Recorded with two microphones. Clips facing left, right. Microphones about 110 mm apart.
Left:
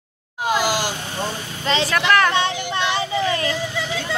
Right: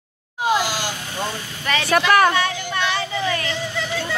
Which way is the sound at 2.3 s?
20° left (ahead or behind).